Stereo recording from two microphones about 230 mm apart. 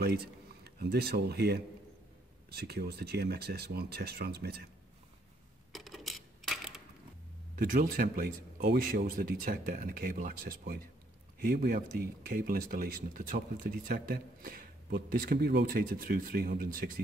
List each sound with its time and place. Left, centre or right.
0.0 s speech: right
5.7 s coin: centre
7.5 s speech: right